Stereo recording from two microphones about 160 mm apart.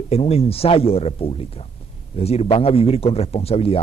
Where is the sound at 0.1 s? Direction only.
40° left (ahead or behind).